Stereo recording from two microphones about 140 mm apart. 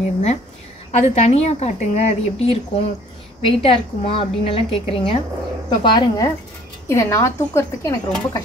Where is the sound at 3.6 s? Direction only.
40° left (ahead or behind).